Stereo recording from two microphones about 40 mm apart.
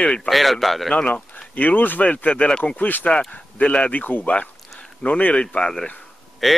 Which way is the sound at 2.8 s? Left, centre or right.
Left.